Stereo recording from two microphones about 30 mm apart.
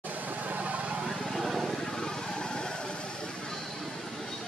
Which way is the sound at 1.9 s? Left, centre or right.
Left.